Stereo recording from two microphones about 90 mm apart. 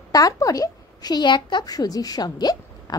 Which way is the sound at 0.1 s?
40° left (ahead or behind).